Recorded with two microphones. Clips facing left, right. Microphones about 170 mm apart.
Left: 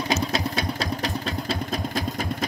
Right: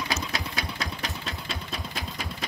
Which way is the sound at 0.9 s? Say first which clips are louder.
Left 8 dB; 40° left (ahead or behind).